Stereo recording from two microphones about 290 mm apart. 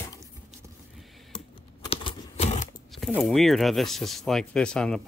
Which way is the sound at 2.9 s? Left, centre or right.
Centre.